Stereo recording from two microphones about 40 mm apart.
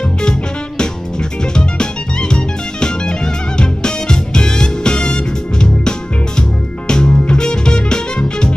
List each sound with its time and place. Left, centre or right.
0.2 s music: left